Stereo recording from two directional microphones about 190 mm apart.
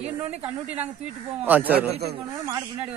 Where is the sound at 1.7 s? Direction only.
60° right (ahead or behind).